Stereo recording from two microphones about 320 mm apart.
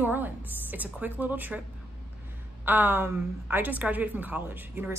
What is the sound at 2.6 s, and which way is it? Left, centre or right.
A woman's voice, centre.